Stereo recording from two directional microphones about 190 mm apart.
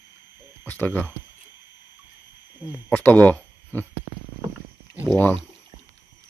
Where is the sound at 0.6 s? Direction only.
10° left (ahead or behind).